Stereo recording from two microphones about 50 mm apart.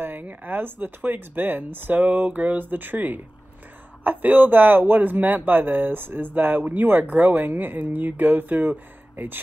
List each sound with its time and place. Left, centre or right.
0.0 s speech: right